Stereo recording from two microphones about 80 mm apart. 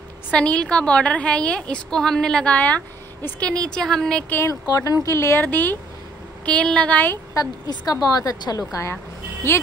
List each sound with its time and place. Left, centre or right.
0.3 s a woman's voice: centre
4.6 s a woman's voice: left
5.1 s speech: left
5.5 s a woman's voice: left
7.3 s a woman's voice: left